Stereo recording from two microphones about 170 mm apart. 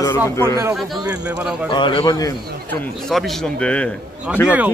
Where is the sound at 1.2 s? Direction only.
5° right (ahead or behind).